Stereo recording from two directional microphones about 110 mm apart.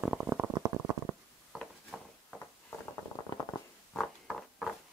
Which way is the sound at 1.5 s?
10° right (ahead or behind).